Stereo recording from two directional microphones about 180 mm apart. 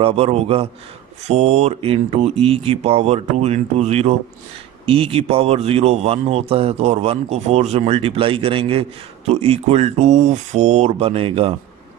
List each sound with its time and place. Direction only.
0.0 s a man's voice: 35° right (ahead or behind)